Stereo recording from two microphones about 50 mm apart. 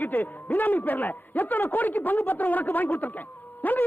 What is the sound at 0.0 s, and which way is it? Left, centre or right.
A man's voice, left.